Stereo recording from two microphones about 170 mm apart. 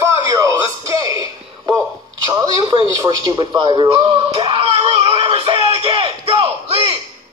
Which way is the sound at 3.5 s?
25° right (ahead or behind).